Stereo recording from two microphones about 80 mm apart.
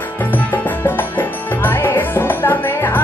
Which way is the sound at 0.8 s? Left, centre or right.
Left.